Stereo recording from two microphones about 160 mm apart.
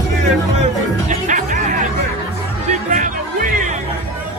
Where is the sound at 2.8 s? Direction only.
55° right (ahead or behind).